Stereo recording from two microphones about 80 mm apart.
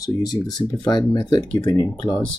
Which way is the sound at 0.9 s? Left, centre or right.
Left.